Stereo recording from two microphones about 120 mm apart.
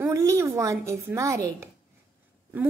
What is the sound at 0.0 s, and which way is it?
A woman's voice, 25° right (ahead or behind).